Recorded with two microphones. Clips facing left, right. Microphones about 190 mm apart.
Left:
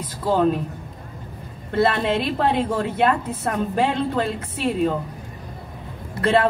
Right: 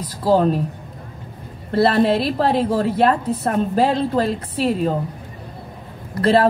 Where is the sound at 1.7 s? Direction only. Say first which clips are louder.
Right 4 dB; 35° right (ahead or behind).